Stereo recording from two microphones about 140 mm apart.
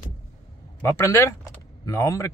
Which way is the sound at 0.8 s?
20° left (ahead or behind).